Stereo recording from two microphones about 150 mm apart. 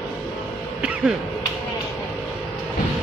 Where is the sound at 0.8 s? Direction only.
10° right (ahead or behind).